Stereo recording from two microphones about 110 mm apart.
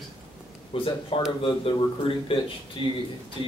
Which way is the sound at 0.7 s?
55° left (ahead or behind).